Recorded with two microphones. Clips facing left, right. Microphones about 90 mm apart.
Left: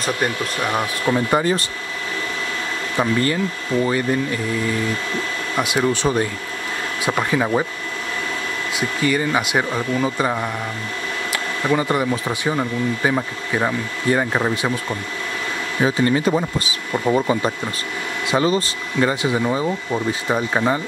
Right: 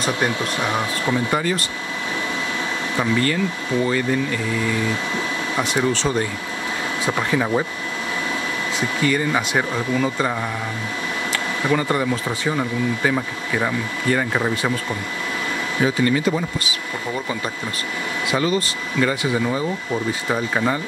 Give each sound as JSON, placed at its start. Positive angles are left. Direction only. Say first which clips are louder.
{"t": 0.2, "sound": "speech", "louder": "even", "side_deg": -15}
{"t": 1.1, "sound": "speech", "louder": "left 4 dB", "side_deg": 25}
{"t": 3.0, "sound": "speech", "louder": "left 1 dB", "side_deg": 15}
{"t": 5.6, "sound": "speech", "louder": "left 2 dB", "side_deg": 10}
{"t": 8.7, "sound": "speech", "louder": "left 1 dB", "side_deg": 10}
{"t": 11.7, "sound": "speech", "louder": "left 1 dB", "side_deg": 10}
{"t": 15.8, "sound": "speech", "louder": "left 1 dB", "side_deg": 30}